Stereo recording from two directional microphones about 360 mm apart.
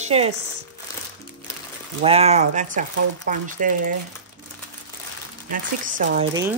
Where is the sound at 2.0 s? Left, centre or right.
Centre.